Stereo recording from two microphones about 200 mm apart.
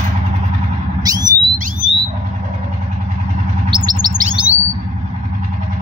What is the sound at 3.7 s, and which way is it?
Bird, 20° right (ahead or behind).